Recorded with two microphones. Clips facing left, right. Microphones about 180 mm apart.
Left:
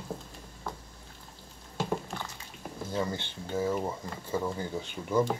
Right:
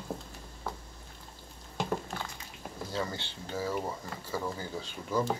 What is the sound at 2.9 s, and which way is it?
Speech, 15° left (ahead or behind).